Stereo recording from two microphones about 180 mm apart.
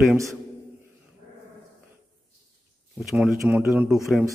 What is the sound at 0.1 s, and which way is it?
Speech, 15° right (ahead or behind).